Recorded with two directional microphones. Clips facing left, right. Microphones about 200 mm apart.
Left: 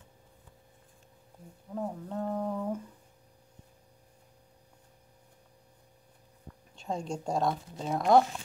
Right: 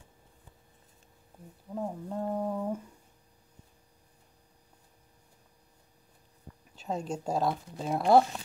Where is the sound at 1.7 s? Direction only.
10° right (ahead or behind).